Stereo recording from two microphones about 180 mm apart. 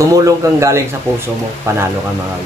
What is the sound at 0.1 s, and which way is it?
Speech, 20° right (ahead or behind).